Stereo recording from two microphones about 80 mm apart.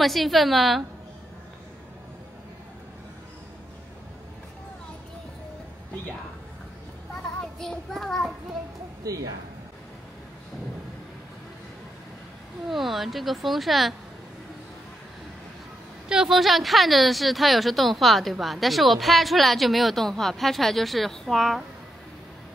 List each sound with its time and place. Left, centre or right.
0.0 s a woman's voice: centre
7.5 s a woman's voice: centre
9.0 s speech: right
12.6 s a woman's voice: centre
16.1 s a woman's voice: centre